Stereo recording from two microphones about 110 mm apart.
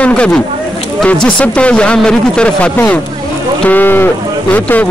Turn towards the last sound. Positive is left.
turn(degrees=15)  # may be behind; listen again after turning